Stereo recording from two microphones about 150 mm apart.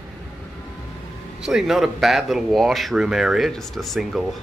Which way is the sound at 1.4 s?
Centre (ahead or behind).